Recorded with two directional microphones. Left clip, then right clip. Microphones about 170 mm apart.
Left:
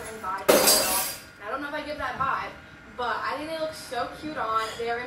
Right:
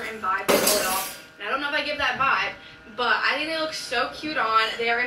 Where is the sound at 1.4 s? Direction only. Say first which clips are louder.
Right 7 dB; 35° right (ahead or behind).